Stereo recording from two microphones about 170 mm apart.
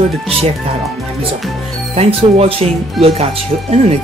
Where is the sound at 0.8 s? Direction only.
Centre (ahead or behind).